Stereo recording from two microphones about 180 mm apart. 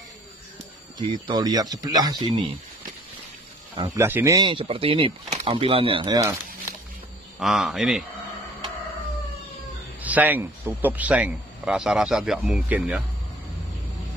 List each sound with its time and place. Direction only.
0.9 s speech: 25° right (ahead or behind)
3.7 s speech: 25° right (ahead or behind)
4.0 s speech: 15° right (ahead or behind)
4.4 s speech: 30° right (ahead or behind)
7.3 s a man's voice: centre (ahead or behind)
10.0 s speech: 10° right (ahead or behind)